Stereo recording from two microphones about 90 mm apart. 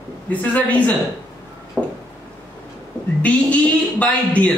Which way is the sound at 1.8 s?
10° right (ahead or behind).